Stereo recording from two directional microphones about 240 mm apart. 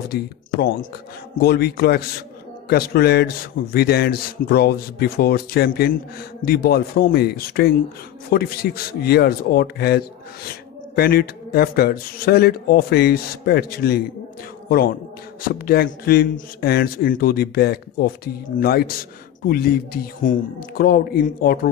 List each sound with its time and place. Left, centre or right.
0.1 s speech: left
15.4 s speech: left